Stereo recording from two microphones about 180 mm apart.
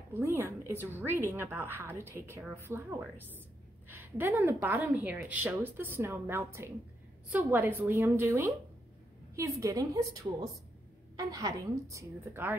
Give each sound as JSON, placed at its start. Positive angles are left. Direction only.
{"t": 0.1, "sound": "a woman's voice", "side_deg": -15}